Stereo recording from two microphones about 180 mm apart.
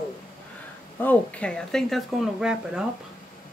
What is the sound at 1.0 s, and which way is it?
Speech, 10° left (ahead or behind).